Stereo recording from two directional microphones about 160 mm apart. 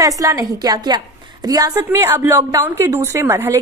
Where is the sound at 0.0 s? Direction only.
20° right (ahead or behind).